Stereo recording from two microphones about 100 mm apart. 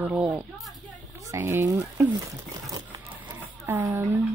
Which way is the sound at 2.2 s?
35° right (ahead or behind).